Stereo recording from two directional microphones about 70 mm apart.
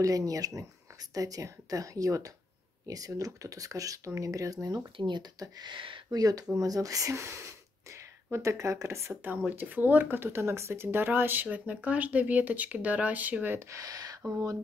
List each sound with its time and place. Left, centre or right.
0.0 s speech: right
5.0 s speech: right
9.1 s speech: right
13.6 s speech: right
13.8 s speech: right